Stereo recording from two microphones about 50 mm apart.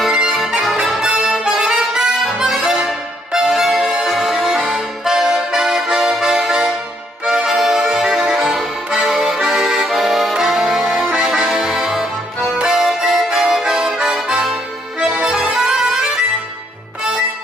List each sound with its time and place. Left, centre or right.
0.0 s music: centre
1.0 s accordion: centre
2.5 s music: centre
4.6 s accordion: centre
6.4 s music: centre
9.5 s accordion: centre
11.1 s music: centre
11.5 s accordion: centre
15.5 s music: centre